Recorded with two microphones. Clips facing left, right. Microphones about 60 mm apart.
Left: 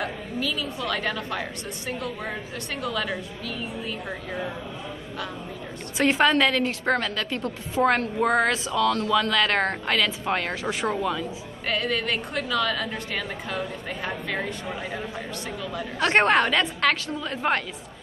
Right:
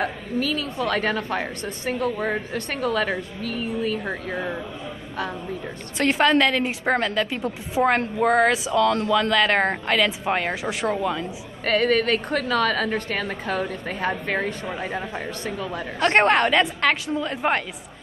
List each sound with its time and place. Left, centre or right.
0.0 s a woman's voice: right
5.9 s a woman's voice: centre
6.6 s a woman's voice: centre
8.8 s speech: right
9.3 s a woman's voice: centre
11.6 s a woman's voice: right
16.0 s a woman's voice: centre